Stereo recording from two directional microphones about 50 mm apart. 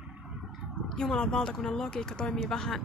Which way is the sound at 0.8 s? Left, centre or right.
Centre.